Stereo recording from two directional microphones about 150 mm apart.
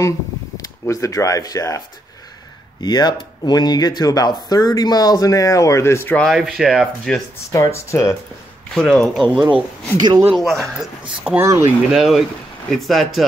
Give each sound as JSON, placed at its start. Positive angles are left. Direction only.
{"t": 0.6, "sound": "speech", "side_deg": 20}
{"t": 2.8, "sound": "speech", "side_deg": 30}
{"t": 6.2, "sound": "speech", "side_deg": 0}
{"t": 7.5, "sound": "speech", "side_deg": 20}
{"t": 8.7, "sound": "speech", "side_deg": 5}
{"t": 9.9, "sound": "speech", "side_deg": -25}
{"t": 10.3, "sound": "speech", "side_deg": 0}